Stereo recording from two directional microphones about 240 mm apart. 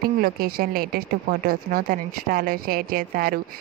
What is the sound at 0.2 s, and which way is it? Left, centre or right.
Speech, right.